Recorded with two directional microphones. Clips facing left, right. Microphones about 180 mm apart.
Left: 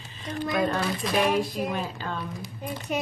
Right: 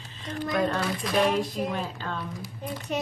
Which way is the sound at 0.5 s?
10° left (ahead or behind).